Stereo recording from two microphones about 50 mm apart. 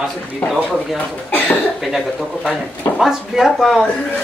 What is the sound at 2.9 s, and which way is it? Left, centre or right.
Speech, centre.